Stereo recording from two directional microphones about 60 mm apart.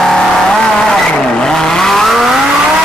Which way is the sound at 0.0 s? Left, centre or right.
Centre.